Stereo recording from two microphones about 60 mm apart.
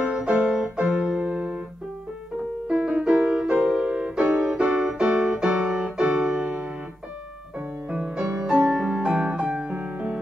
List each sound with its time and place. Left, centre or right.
0.1 s music: centre
0.5 s piano: centre
1.2 s music: centre
2.7 s music: centre
3.8 s music: centre
5.7 s keyboard: centre
6.0 s keyboard: centre
7.9 s music: centre